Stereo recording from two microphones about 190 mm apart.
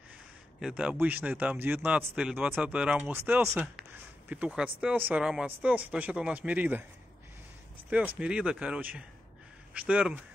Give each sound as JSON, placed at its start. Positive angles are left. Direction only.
{"t": 0.6, "sound": "speech", "side_deg": -5}
{"t": 8.2, "sound": "speech", "side_deg": -5}